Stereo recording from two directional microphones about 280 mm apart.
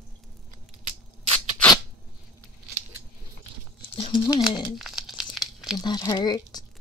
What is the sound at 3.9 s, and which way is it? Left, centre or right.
Speech, centre.